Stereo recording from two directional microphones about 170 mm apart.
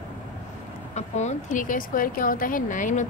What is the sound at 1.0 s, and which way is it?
Speech, 45° left (ahead or behind).